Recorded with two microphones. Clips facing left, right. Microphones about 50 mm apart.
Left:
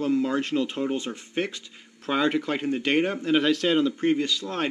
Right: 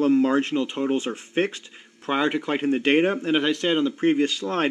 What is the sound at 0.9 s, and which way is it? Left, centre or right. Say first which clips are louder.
Speech: right 4 dB; right.